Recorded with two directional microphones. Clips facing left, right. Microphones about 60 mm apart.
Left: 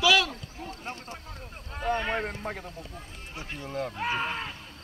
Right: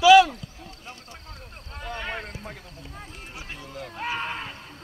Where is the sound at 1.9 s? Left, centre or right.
Left.